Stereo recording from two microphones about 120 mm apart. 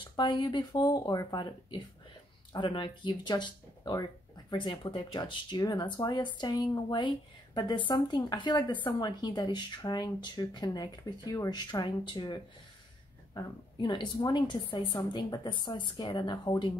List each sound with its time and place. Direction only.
0.1 s speech: 40° left (ahead or behind)